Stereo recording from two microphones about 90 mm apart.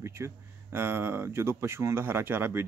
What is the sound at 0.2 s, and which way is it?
Speech, 25° right (ahead or behind).